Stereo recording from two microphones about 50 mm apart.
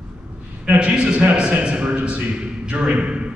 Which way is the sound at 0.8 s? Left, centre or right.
Right.